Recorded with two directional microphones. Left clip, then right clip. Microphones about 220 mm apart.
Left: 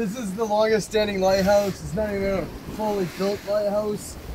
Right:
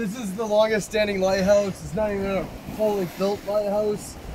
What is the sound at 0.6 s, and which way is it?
Speech, 5° left (ahead or behind).